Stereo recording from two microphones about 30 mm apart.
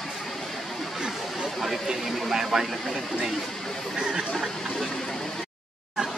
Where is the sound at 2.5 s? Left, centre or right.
Centre.